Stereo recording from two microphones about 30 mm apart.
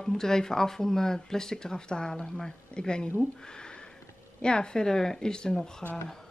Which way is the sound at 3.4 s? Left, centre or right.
Left.